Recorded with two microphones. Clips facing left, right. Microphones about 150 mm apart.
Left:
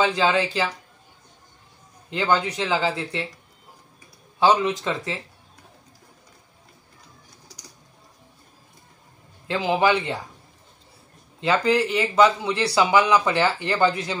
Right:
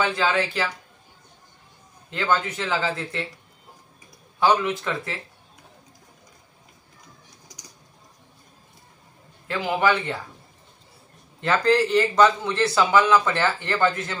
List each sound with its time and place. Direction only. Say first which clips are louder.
0.0 s speech: left 2 dB; 20° left (ahead or behind)
2.0 s speech: left 2 dB; 15° left (ahead or behind)
4.4 s speech: left 2 dB; 20° left (ahead or behind)
9.5 s speech: left 2 dB; 20° left (ahead or behind)
11.4 s speech: even; 10° left (ahead or behind)